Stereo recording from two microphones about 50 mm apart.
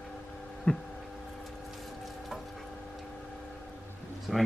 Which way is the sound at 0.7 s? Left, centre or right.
Centre.